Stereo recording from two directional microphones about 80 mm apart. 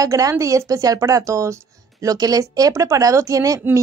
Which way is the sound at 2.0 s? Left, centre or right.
Right.